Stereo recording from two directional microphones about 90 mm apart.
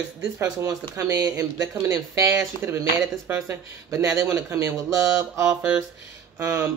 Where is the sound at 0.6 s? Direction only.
35° right (ahead or behind).